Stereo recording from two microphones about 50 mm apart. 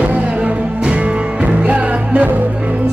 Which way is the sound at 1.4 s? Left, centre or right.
Right.